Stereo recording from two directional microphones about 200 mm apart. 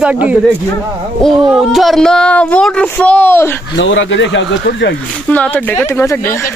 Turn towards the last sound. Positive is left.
turn(degrees=10)  # may be behind; listen again after turning